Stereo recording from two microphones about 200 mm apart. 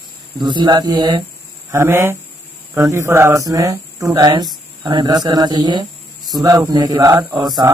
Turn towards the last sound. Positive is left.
turn(degrees=-15)  # may be behind; listen again after turning